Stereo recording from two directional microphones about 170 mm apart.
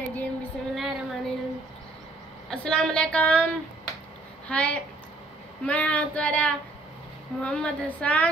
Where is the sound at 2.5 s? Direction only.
5° left (ahead or behind).